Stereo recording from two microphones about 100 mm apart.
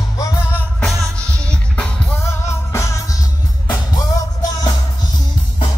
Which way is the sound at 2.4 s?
30° left (ahead or behind).